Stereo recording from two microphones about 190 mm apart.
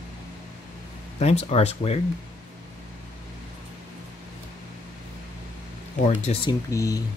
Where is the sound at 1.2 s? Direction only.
35° left (ahead or behind).